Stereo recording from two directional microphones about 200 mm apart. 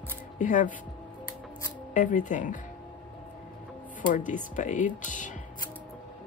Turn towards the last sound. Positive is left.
turn(degrees=40)  # may be behind; listen again after turning